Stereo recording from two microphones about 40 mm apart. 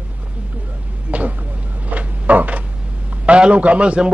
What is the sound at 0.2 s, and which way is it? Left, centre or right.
Vehicle, right.